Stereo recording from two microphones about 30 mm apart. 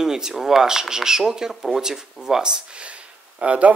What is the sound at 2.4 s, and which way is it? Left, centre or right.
Speech, right.